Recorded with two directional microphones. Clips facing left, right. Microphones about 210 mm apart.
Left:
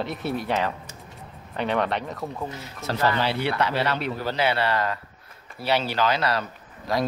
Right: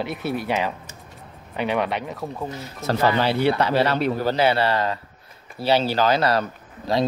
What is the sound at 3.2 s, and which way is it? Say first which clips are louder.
Speech: right 5 dB; 40° right (ahead or behind).